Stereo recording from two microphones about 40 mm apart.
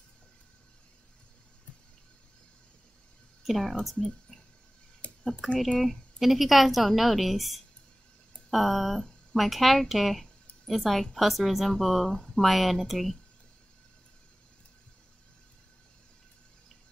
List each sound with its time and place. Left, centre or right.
3.4 s a woman's voice: centre
4.3 s cricket: left
5.4 s a woman's voice: centre